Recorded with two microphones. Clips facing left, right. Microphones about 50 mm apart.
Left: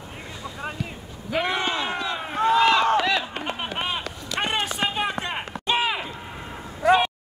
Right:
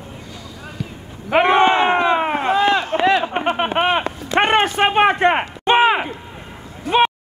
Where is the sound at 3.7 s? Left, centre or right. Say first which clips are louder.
Right 11 dB; right.